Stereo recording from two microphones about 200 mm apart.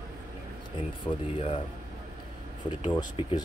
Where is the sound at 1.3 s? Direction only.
25° left (ahead or behind).